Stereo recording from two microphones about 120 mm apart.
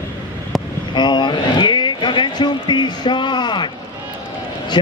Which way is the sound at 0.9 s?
40° left (ahead or behind).